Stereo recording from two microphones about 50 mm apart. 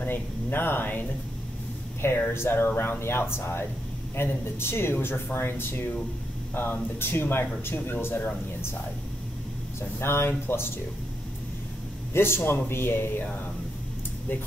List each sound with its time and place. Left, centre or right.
0.0 s speech: left
2.3 s speech: left
9.8 s speech: left
12.1 s speech: left